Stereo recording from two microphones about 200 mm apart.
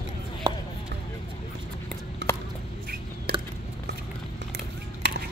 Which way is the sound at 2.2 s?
60° right (ahead or behind).